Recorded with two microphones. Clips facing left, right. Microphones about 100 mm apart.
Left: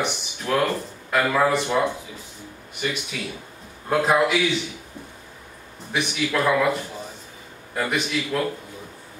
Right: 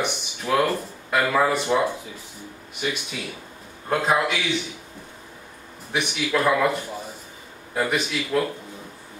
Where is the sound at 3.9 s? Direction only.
Centre (ahead or behind).